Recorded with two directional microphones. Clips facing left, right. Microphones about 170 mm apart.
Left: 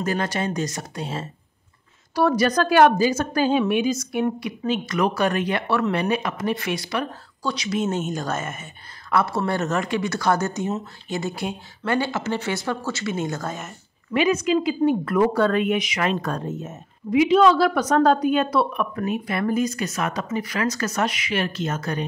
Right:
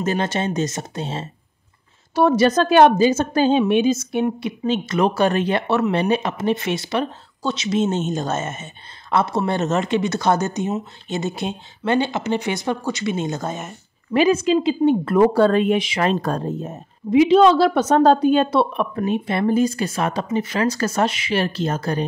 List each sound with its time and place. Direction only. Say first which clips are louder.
0.0 s speech: right 3 dB; 25° right (ahead or behind)
14.1 s speech: right 4 dB; 30° right (ahead or behind)